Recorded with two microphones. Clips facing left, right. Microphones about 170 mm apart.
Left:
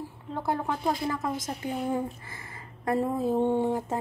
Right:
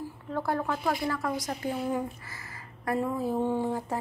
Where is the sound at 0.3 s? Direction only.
20° left (ahead or behind).